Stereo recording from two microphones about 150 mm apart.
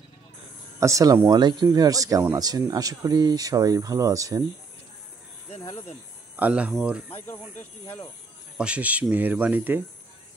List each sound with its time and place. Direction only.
0.7 s speech: 20° right (ahead or behind)
6.3 s speech: 10° right (ahead or behind)
7.1 s speech: 10° left (ahead or behind)
8.5 s speech: 10° right (ahead or behind)